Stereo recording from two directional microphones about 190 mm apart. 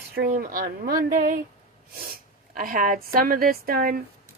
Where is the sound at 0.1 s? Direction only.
50° right (ahead or behind).